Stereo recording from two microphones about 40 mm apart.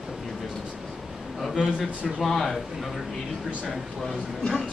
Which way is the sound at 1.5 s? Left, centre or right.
Centre.